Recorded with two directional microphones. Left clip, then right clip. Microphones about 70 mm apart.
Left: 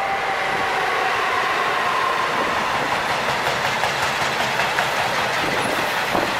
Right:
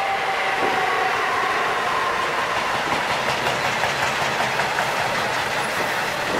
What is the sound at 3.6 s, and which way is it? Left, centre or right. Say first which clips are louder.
Vehicle: left 1 dB; left.